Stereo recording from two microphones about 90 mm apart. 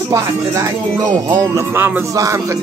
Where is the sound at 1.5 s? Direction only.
25° right (ahead or behind).